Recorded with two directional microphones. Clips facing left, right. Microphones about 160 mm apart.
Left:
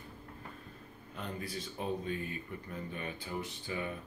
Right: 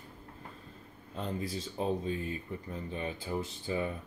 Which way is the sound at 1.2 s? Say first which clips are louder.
Right 5 dB; 30° right (ahead or behind).